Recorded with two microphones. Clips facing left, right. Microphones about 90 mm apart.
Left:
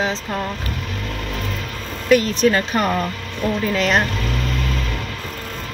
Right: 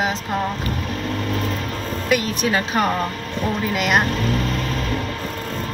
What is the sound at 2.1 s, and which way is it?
Speech, 15° right (ahead or behind).